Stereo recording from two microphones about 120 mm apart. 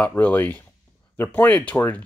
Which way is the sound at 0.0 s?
15° left (ahead or behind).